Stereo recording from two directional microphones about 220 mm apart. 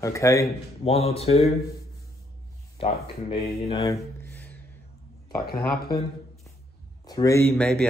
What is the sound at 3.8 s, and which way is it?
Speech, 15° left (ahead or behind).